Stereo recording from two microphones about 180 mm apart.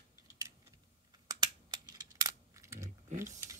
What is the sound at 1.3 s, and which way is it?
Computer keyboard, 20° right (ahead or behind).